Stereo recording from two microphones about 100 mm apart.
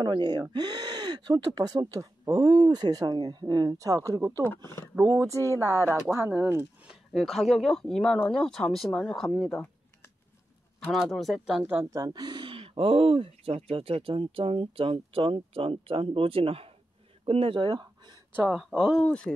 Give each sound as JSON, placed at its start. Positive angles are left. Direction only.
{"t": 0.0, "sound": "speech", "side_deg": -50}
{"t": 4.4, "sound": "speech", "side_deg": 25}
{"t": 5.0, "sound": "speech", "side_deg": -30}
{"t": 6.9, "sound": "speech", "side_deg": -5}
{"t": 10.9, "sound": "speech", "side_deg": 0}
{"t": 11.6, "sound": "speech", "side_deg": -20}
{"t": 11.9, "sound": "speech", "side_deg": -40}
{"t": 18.5, "sound": "speech", "side_deg": 0}